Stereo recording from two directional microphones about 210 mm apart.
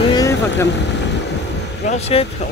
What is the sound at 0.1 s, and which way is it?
Vehicle, 15° left (ahead or behind).